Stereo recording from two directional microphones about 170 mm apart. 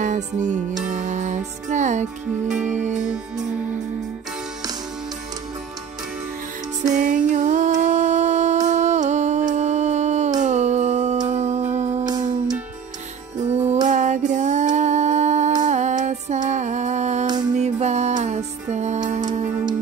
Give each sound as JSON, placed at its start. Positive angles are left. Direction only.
{"t": 0.0, "sound": "music", "side_deg": -45}
{"t": 6.8, "sound": "music", "side_deg": -50}
{"t": 10.4, "sound": "humming", "side_deg": -45}
{"t": 11.2, "sound": "music", "side_deg": -40}
{"t": 13.4, "sound": "music", "side_deg": -40}